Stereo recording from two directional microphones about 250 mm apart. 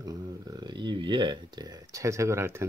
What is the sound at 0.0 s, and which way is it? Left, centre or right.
Speech, centre.